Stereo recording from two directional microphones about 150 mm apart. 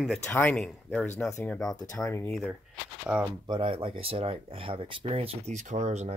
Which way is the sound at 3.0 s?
10° right (ahead or behind).